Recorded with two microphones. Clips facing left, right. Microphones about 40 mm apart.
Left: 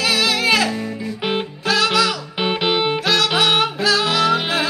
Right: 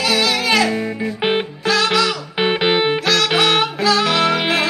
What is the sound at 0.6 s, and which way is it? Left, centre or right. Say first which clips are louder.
Music: right 3 dB; right.